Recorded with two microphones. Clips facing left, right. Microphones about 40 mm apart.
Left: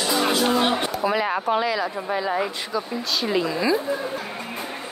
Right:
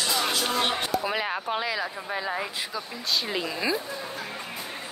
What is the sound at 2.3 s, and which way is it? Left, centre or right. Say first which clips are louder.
Speech: left 6 dB; centre.